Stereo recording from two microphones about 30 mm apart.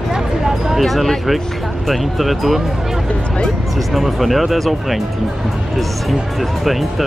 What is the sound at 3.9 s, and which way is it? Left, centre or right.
Speech, centre.